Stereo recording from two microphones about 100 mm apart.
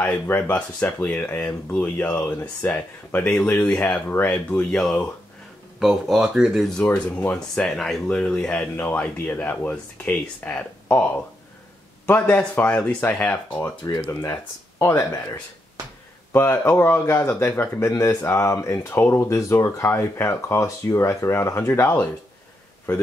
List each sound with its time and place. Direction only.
0.1 s speech: 20° left (ahead or behind); by 6.7 s 5° right (ahead or behind)
6.8 s speech: 20° left (ahead or behind)
7.3 s speech: 10° left (ahead or behind)
14.8 s speech: 25° left (ahead or behind)
16.3 s speech: 20° left (ahead or behind)